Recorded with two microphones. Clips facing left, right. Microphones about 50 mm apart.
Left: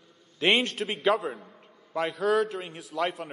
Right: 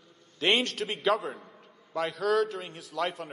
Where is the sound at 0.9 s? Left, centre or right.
Centre.